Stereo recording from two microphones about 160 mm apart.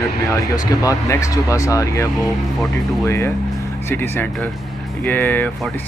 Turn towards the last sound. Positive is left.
turn(degrees=10)  # may be behind; listen again after turning